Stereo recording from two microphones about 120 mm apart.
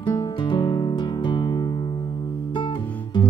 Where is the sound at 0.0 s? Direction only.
40° left (ahead or behind).